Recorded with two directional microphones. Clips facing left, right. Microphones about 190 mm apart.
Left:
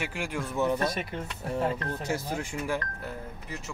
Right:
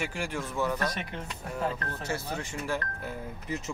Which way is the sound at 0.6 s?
20° left (ahead or behind).